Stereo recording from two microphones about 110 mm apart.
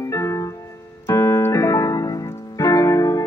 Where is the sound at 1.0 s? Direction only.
30° left (ahead or behind).